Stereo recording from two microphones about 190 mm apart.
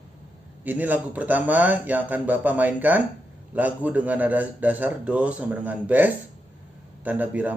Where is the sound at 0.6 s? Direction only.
10° right (ahead or behind).